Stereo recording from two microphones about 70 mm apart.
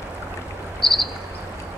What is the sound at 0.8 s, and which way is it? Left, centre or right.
Cricket, centre.